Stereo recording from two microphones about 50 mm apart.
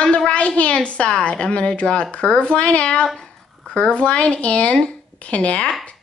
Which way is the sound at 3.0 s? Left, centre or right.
Centre.